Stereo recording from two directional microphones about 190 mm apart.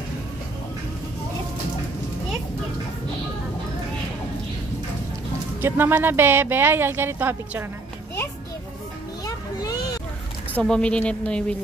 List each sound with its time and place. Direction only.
5.6 s speech: 10° right (ahead or behind)
9.2 s music: 20° left (ahead or behind)
10.5 s a woman's voice: 5° left (ahead or behind)